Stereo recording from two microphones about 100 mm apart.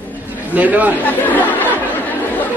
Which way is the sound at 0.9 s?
15° left (ahead or behind).